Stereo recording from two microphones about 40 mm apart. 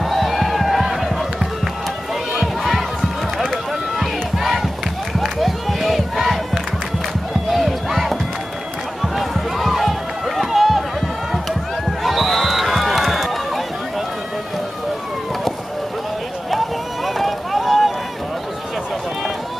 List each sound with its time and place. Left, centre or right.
0.0 s a sound: centre
2.3 s crowd: centre
7.5 s music: centre
9.0 s run: centre
12.0 s a sound: centre
16.4 s run: centre